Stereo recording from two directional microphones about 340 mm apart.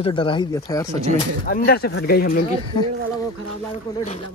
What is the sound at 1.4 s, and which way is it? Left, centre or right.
Speech, left.